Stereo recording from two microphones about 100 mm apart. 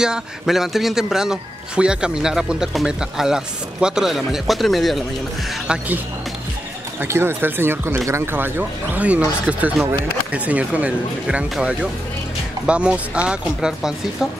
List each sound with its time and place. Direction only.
0.0 s speech: 5° right (ahead or behind)
7.0 s speech: 25° right (ahead or behind); by 13.9 s 5° right (ahead or behind)